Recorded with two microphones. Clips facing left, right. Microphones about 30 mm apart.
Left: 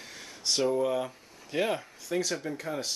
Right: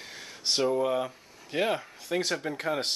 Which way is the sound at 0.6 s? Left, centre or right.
Centre.